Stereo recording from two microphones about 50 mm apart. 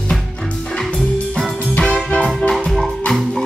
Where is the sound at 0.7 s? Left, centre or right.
Centre.